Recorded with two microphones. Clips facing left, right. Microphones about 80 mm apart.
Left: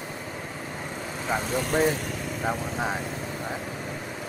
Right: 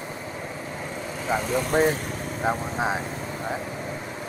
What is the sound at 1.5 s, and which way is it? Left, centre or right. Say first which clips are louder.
Speech: right 2 dB; right.